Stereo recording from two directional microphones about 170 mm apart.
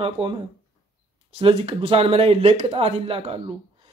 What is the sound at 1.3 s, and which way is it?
Speech, 35° right (ahead or behind).